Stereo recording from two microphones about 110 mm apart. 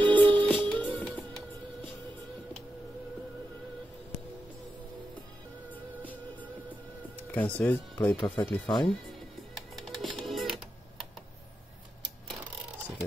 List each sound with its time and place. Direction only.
0.0 s music: 15° left (ahead or behind)
7.2 s speech: 15° left (ahead or behind)
8.6 s speech: 45° left (ahead or behind)
9.8 s music: centre (ahead or behind)